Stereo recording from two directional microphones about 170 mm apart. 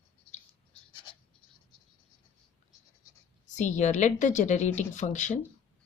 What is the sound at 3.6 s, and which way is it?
Speech, 45° left (ahead or behind).